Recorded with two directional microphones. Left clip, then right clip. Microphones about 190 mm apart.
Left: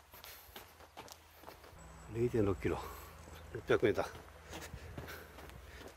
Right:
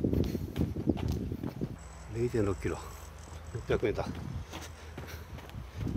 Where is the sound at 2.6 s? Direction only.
30° left (ahead or behind).